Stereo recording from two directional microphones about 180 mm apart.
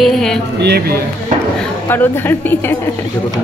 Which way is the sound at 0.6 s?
65° right (ahead or behind).